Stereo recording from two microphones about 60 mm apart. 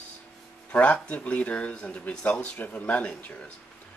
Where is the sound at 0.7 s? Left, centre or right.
Left.